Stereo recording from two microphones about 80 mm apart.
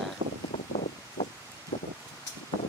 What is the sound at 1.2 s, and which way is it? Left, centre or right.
Rustling leaves, left.